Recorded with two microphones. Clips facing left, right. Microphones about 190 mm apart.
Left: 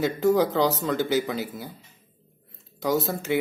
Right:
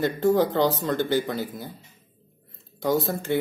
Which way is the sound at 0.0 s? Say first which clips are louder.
Even; 5° left (ahead or behind).